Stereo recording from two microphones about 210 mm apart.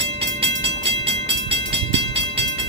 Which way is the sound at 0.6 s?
55° right (ahead or behind).